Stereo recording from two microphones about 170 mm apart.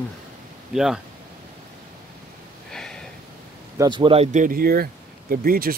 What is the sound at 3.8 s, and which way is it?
Speech, 30° right (ahead or behind).